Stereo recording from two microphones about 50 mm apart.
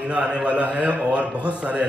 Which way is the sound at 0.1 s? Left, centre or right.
Right.